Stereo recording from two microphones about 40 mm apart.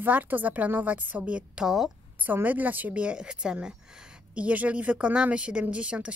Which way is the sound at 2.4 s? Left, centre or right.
Right.